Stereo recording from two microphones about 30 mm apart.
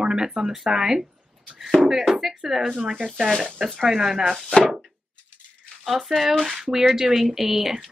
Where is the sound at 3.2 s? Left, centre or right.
Right.